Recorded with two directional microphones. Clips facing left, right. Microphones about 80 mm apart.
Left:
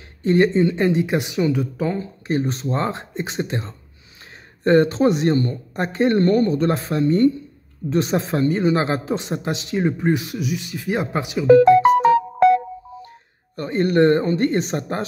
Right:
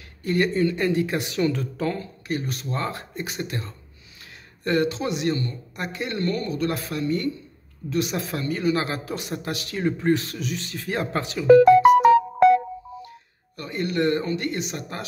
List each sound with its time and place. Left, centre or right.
0.2 s speech: left
2.2 s speech: left
13.6 s speech: left